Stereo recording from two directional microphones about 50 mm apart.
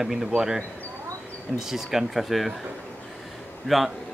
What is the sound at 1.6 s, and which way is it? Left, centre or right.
Speech, centre.